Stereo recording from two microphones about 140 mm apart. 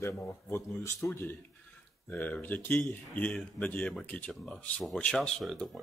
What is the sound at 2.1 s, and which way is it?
Speech, 15° left (ahead or behind).